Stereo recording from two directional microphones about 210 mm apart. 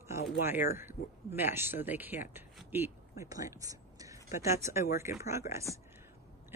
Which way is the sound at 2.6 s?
10° right (ahead or behind).